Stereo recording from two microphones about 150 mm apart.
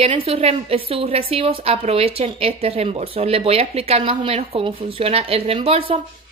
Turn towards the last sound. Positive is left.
turn(degrees=-40)  # may be behind; listen again after turning